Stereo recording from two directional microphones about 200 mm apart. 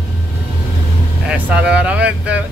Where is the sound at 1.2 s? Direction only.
5° right (ahead or behind).